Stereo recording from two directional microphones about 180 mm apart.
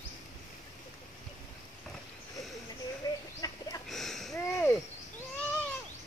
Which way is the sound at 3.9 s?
Centre (ahead or behind).